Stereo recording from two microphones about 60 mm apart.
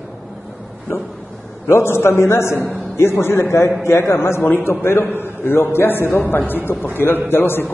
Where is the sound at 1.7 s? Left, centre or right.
Left.